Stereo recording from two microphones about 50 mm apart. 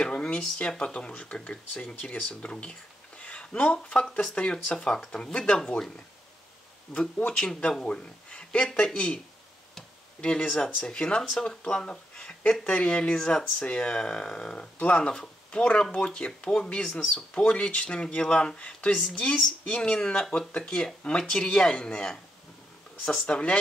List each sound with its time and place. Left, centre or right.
0.0 s speech: centre
2.5 s speech: left
4.9 s speech: centre
6.9 s speech: centre
10.6 s speech: centre
18.7 s speech: left